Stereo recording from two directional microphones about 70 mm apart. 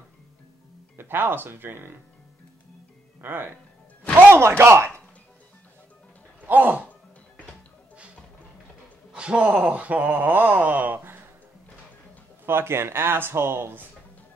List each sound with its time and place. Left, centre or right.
0.9 s speech: right
3.2 s speech: right
6.4 s a sound: right
9.1 s wail: centre
12.4 s speech: right